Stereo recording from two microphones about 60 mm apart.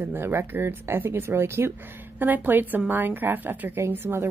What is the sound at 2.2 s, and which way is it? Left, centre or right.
A woman's voice, right.